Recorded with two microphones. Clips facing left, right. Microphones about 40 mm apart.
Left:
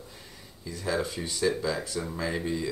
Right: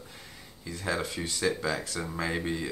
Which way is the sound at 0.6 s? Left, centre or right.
Right.